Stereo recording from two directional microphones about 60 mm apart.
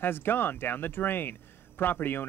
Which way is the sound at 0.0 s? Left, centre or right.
Left.